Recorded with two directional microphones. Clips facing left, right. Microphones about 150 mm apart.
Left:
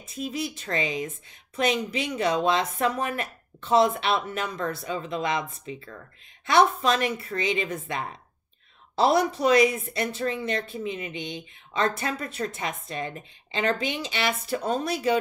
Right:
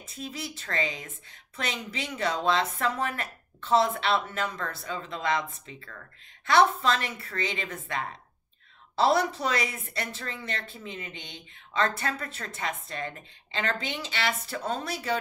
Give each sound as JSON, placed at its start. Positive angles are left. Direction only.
{"t": 0.2, "sound": "speech", "side_deg": 15}